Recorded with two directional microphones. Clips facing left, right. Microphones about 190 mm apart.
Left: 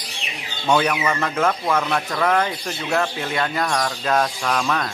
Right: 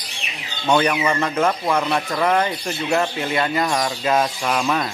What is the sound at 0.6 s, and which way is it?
Speech, 5° right (ahead or behind).